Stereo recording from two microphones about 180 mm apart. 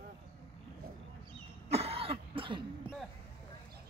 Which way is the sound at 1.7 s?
35° right (ahead or behind).